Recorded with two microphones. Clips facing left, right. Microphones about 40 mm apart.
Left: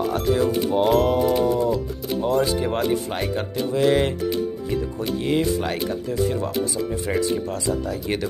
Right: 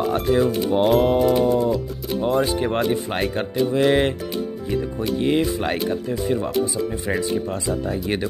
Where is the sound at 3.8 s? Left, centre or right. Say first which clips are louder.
Left 1 dB; right.